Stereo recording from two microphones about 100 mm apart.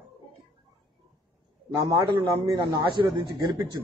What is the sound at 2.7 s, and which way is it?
Speech, 50° right (ahead or behind).